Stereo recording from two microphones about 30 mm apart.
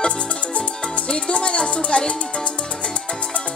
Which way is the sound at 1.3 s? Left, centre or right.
Left.